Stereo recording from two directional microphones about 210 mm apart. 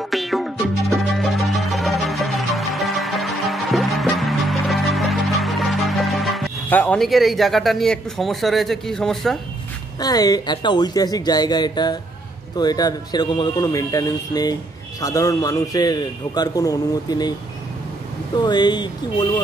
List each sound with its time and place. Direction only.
0.1 s music: centre (ahead or behind)
9.9 s speech: 15° left (ahead or behind)
18.4 s speech: 20° left (ahead or behind)